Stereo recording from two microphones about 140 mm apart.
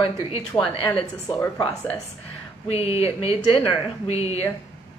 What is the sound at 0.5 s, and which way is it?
Speech, 25° left (ahead or behind).